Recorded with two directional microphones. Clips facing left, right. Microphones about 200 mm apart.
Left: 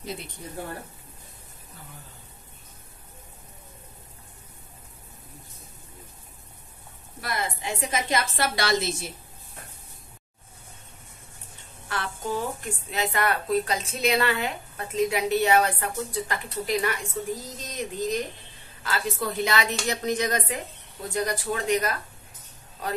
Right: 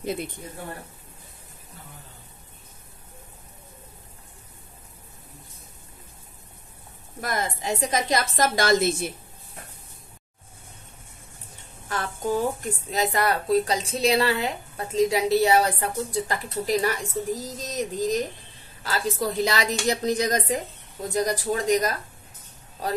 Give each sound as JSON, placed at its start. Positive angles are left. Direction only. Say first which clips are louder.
{"t": 7.2, "sound": "a woman's voice", "louder": "right 3 dB", "side_deg": -45}
{"t": 11.9, "sound": "a woman's voice", "louder": "right 4 dB", "side_deg": -45}